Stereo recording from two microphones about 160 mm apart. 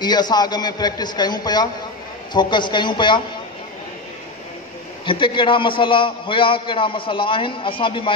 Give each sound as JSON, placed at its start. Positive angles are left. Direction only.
{"t": 0.0, "sound": "a man's voice", "side_deg": 25}
{"t": 5.0, "sound": "a man's voice", "side_deg": 30}